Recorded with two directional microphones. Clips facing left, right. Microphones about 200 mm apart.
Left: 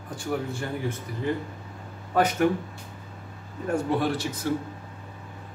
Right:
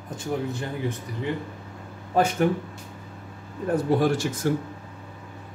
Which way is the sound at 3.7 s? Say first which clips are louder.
Right 3 dB; 40° right (ahead or behind).